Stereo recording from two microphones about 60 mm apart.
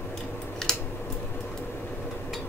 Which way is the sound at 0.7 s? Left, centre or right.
Centre.